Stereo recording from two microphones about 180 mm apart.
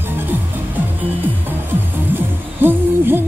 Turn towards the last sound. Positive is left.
turn(degrees=-10)  # may be behind; listen again after turning